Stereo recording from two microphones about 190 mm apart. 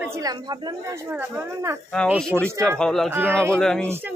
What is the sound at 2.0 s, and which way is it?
Speech, centre (ahead or behind).